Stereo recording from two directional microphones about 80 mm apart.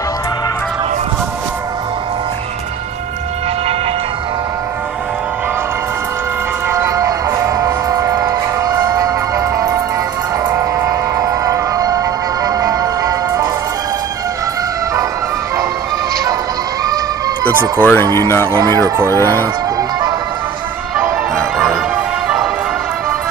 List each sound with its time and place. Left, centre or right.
6.7 s music: right
17.7 s speech: left
21.9 s music: centre